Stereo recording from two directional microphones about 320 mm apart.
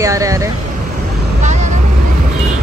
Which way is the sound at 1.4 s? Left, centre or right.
Right.